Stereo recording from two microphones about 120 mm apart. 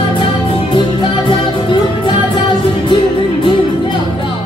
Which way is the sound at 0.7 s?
40° left (ahead or behind).